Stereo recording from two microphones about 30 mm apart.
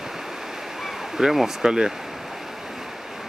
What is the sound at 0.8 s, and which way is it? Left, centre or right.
Speech, centre.